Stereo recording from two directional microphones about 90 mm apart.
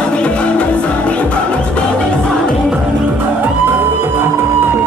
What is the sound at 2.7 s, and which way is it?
Music, 20° right (ahead or behind).